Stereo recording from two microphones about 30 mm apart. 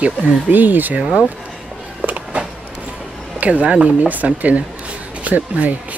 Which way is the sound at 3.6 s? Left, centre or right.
Right.